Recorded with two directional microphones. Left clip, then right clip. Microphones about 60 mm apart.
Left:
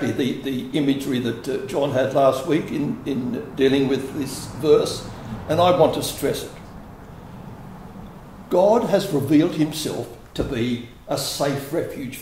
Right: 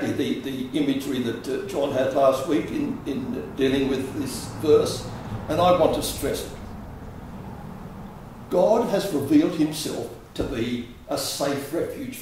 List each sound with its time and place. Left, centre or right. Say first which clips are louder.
0.0 s speech: left 2 dB; left
8.5 s speech: left 3 dB; left